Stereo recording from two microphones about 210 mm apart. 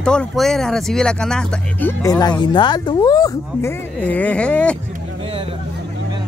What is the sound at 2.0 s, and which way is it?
Speech, 15° left (ahead or behind).